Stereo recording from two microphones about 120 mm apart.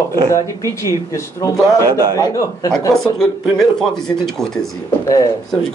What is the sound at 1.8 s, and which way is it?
Speech, 30° right (ahead or behind).